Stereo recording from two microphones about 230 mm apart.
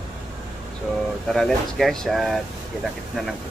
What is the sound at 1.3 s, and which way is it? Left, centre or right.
Speech, centre.